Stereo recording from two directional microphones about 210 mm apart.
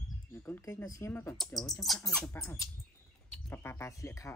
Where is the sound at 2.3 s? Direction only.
15° left (ahead or behind).